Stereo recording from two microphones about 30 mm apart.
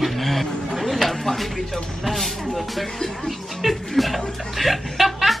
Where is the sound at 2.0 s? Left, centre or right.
Centre.